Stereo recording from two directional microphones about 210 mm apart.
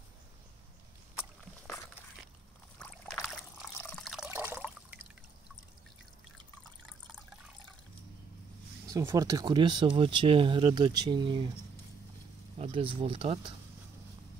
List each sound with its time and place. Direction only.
2.8 s liquid: 5° left (ahead or behind)
8.8 s speech: 15° right (ahead or behind)
12.5 s speech: 25° right (ahead or behind)